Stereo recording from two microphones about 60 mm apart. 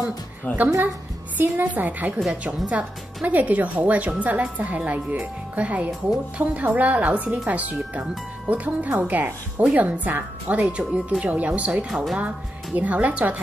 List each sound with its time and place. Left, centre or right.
0.5 s a woman's voice: left
1.4 s speech: right
11.9 s speech: centre
12.7 s speech: right